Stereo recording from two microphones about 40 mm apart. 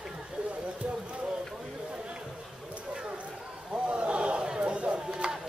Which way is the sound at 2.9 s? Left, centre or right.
Right.